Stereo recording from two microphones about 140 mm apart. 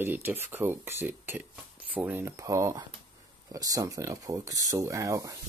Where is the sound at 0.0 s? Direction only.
15° right (ahead or behind).